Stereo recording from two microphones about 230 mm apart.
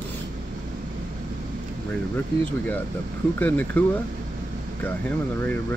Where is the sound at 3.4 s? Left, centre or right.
Centre.